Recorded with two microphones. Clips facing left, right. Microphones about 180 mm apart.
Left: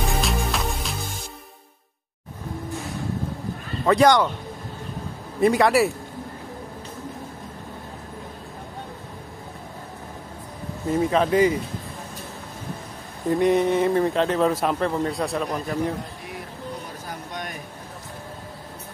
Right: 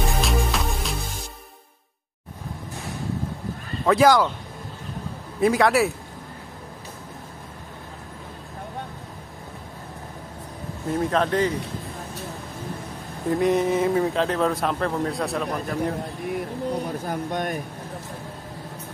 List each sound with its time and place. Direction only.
0.1 s music: centre (ahead or behind)
3.8 s speech: centre (ahead or behind)
5.4 s speech: centre (ahead or behind)
10.9 s speech: centre (ahead or behind)
13.3 s speech: centre (ahead or behind)
17.0 s a sound: 55° right (ahead or behind)